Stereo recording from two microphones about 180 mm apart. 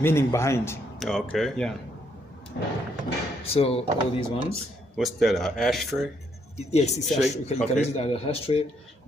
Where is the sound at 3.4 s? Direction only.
35° left (ahead or behind).